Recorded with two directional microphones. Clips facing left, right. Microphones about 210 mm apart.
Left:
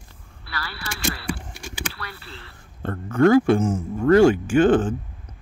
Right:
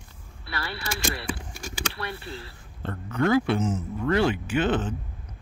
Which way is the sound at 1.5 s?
40° right (ahead or behind).